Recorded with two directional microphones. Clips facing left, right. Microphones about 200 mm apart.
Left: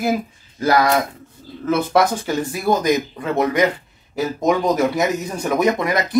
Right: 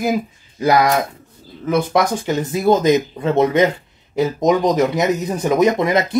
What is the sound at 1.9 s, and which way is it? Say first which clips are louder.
Speech: even; 20° right (ahead or behind).